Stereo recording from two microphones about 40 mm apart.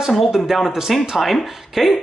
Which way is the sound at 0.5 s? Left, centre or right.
Centre.